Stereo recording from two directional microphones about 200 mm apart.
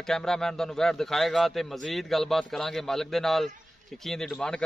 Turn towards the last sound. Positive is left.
turn(degrees=5)  # may be behind; listen again after turning